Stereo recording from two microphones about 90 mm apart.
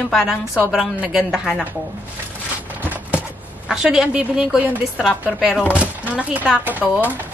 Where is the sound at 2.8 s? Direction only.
15° right (ahead or behind).